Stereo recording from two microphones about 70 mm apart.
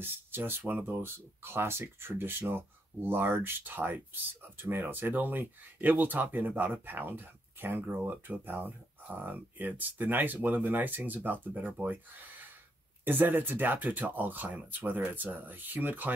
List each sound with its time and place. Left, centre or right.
0.0 s speech: right